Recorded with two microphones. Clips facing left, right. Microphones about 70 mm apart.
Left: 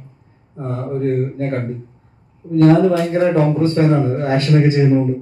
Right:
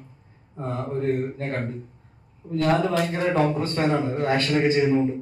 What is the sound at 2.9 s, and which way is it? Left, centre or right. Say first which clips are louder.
A man's voice: left 7 dB; left.